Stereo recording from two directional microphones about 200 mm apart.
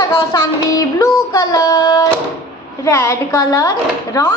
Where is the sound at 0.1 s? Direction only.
15° left (ahead or behind).